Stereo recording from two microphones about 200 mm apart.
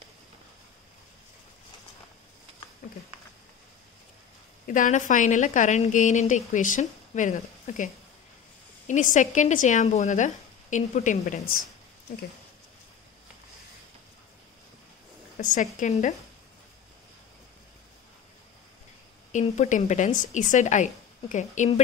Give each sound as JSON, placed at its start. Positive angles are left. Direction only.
{"t": 4.6, "sound": "a woman's voice", "side_deg": 40}
{"t": 15.3, "sound": "a woman's voice", "side_deg": 40}
{"t": 19.3, "sound": "a woman's voice", "side_deg": 35}